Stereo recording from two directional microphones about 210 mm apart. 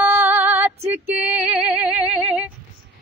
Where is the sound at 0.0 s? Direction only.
10° right (ahead or behind).